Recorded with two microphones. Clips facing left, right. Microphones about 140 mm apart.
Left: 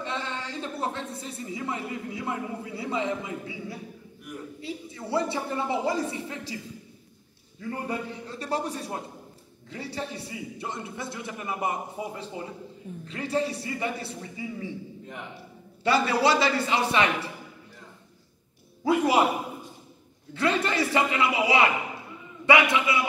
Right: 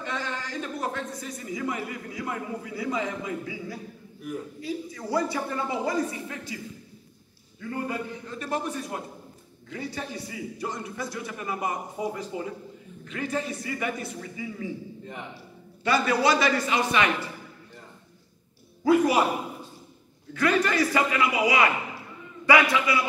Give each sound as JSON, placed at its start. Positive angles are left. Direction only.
{"t": 0.0, "sound": "a man's voice", "side_deg": 25}
{"t": 8.3, "sound": "a man's voice", "side_deg": 35}
{"t": 15.8, "sound": "a man's voice", "side_deg": 30}
{"t": 18.9, "sound": "a man's voice", "side_deg": 25}
{"t": 20.3, "sound": "a man's voice", "side_deg": 25}